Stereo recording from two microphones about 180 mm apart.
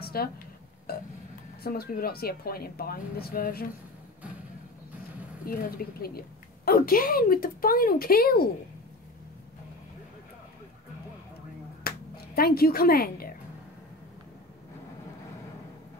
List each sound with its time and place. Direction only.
0.0 s dishes: 60° left (ahead or behind)
0.9 s a sound: 60° left (ahead or behind)
1.6 s speech: 55° left (ahead or behind)
5.5 s a woman's voice: 55° left (ahead or behind)
11.9 s a sound: 55° left (ahead or behind)
12.4 s speech: 55° left (ahead or behind)